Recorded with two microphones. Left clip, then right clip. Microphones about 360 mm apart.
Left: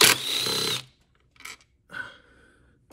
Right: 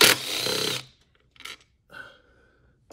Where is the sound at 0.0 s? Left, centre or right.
Centre.